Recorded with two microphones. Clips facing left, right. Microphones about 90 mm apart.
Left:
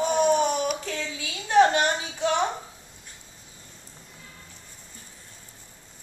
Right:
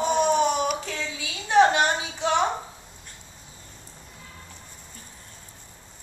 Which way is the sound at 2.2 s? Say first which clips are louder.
Right 1 dB; 35° right (ahead or behind).